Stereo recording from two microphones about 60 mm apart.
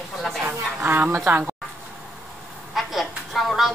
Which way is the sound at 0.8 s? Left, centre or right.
Right.